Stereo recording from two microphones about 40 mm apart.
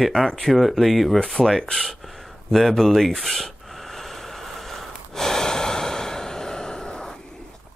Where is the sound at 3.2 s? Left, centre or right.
Centre.